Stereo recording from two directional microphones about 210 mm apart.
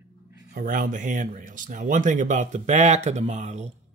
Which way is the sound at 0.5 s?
40° right (ahead or behind).